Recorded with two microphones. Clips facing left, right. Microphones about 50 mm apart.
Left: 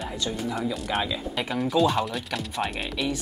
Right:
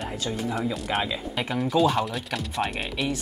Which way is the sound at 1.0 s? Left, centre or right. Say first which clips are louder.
Even; centre.